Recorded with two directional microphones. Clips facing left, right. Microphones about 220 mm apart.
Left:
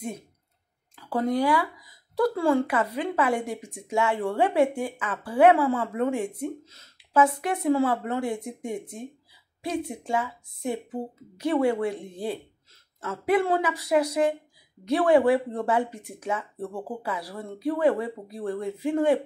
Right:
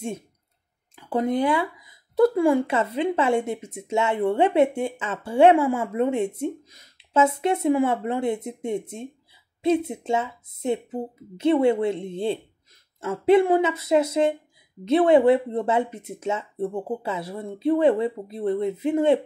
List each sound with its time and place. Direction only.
0.9 s speech: 20° right (ahead or behind)